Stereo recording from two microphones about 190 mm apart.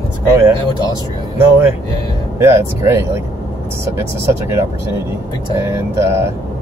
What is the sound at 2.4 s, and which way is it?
Speech, 15° right (ahead or behind).